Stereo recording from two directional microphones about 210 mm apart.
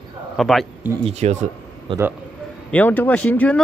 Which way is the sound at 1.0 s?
30° right (ahead or behind).